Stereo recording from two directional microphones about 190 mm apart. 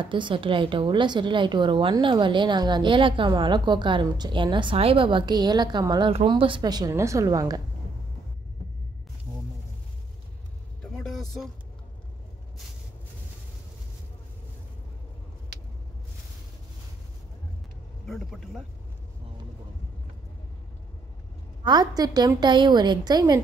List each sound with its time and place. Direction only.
0.0 s a woman's voice: 25° right (ahead or behind)
10.8 s vehicle: 5° left (ahead or behind)
18.0 s a sound: centre (ahead or behind)
21.6 s a woman's voice: 20° right (ahead or behind)